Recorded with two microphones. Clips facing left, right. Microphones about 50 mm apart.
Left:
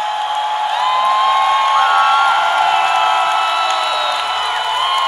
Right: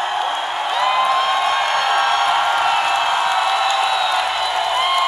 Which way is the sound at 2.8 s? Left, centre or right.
Left.